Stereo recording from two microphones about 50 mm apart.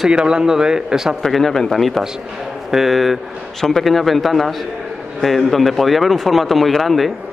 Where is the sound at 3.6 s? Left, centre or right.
Centre.